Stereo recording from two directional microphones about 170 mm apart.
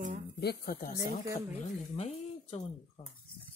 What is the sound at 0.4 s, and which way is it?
Speech, 65° left (ahead or behind).